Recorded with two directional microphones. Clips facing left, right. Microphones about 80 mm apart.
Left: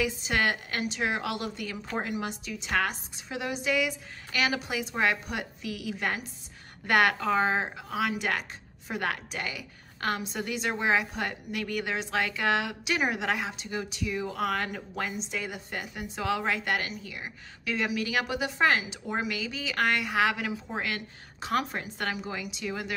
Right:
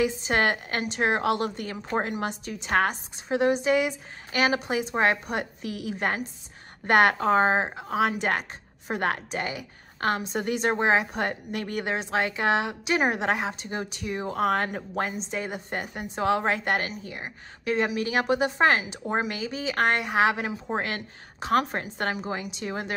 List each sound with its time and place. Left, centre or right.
0.0 s a woman's voice: right